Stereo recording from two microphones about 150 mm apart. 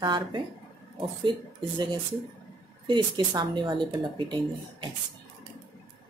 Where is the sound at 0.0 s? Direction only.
30° right (ahead or behind).